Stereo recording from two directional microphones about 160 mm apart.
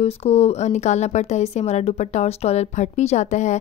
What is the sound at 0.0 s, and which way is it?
Speech, 40° left (ahead or behind).